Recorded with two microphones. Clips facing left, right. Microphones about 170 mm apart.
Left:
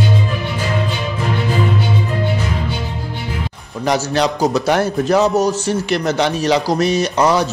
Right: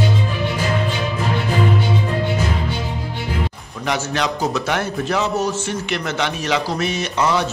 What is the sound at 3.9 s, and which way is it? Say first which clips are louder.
A man's voice: left 5 dB; 35° left (ahead or behind).